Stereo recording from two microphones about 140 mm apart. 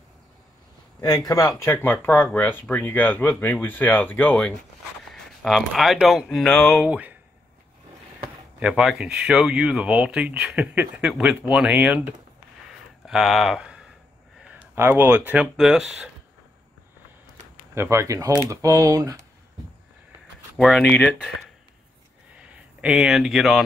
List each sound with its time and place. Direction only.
1.0 s a man's voice: 25° left (ahead or behind); by 7.2 s 10° right (ahead or behind)
8.5 s speech: 5° right (ahead or behind)
13.0 s speech: centre (ahead or behind)
17.7 s speech: 20° right (ahead or behind)
20.5 s speech: centre (ahead or behind)
20.8 s speech: 10° left (ahead or behind)
22.8 s speech: centre (ahead or behind)